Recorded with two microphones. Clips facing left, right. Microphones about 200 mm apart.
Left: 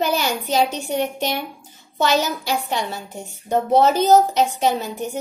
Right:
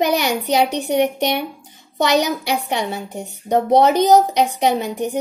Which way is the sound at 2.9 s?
15° right (ahead or behind).